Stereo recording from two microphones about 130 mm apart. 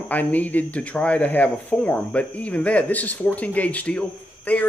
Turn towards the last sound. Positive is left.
turn(degrees=10)  # may be behind; listen again after turning